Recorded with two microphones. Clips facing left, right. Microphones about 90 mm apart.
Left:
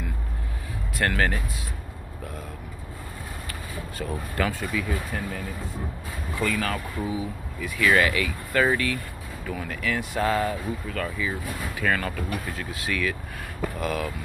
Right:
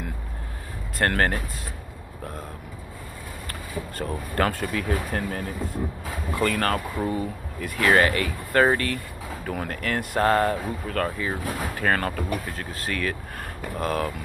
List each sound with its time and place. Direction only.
0.9 s speech: 45° right (ahead or behind)
4.4 s speech: 55° right (ahead or behind)
7.6 s speech: 45° right (ahead or behind)
11.1 s speech: 45° right (ahead or behind)